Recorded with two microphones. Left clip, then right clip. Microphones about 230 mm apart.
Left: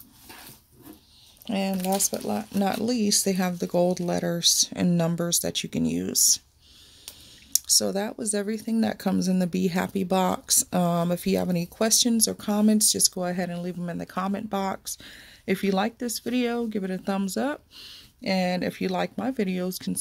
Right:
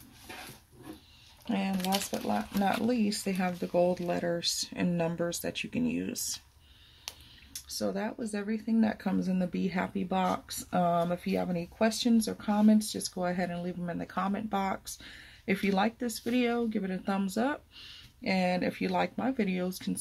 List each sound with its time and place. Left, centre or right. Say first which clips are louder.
1.5 s speech: left 5 dB; left
7.5 s speech: left 10 dB; left